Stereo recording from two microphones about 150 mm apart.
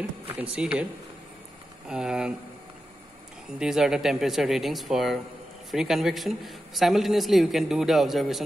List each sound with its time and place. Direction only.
0.4 s a man's voice: 5° right (ahead or behind)
1.9 s a man's voice: 5° right (ahead or behind)
3.5 s a man's voice: 5° right (ahead or behind)